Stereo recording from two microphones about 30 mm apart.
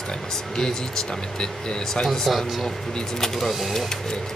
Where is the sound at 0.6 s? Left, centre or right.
Left.